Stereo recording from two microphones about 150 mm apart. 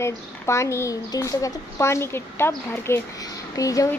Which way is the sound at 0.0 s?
20° left (ahead or behind).